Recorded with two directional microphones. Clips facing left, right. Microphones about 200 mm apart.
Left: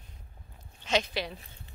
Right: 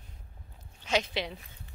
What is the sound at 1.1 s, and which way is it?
Speech, 20° right (ahead or behind).